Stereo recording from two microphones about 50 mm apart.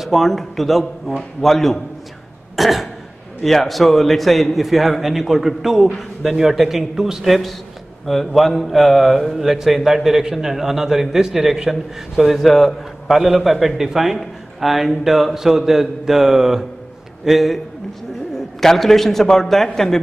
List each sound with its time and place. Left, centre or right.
0.0 s a man's voice: centre
2.5 s throat clearing: centre
3.4 s a man's voice: centre